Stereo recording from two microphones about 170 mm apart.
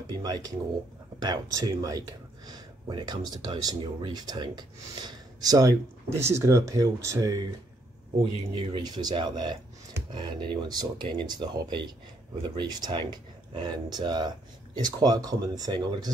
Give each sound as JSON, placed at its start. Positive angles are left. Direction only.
{"t": 0.1, "sound": "speech", "side_deg": -25}
{"t": 8.7, "sound": "speech", "side_deg": -25}